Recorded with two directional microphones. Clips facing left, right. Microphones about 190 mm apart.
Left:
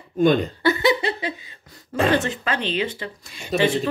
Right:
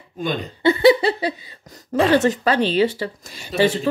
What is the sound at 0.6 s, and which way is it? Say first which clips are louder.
Speech: right 6 dB; 25° right (ahead or behind).